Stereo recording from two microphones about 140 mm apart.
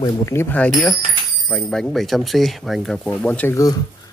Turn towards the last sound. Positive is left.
turn(degrees=10)  # may be behind; listen again after turning